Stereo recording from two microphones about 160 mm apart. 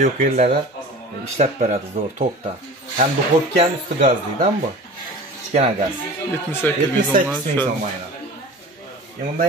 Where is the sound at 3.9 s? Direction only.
45° right (ahead or behind).